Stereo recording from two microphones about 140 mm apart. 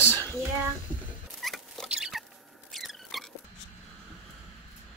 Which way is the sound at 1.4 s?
Centre (ahead or behind).